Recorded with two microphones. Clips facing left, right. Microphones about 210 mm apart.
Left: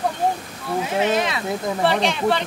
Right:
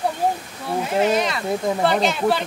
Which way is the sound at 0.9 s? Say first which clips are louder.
Right 2 dB; centre (ahead or behind).